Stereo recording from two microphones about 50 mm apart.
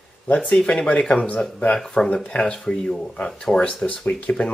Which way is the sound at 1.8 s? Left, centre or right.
Centre.